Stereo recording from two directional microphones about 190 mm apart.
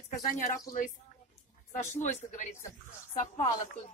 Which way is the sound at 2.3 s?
40° left (ahead or behind).